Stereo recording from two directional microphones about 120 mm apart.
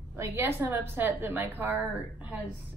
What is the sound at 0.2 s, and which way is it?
A woman's voice, 20° right (ahead or behind).